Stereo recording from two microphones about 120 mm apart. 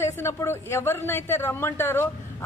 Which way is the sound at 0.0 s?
20° left (ahead or behind).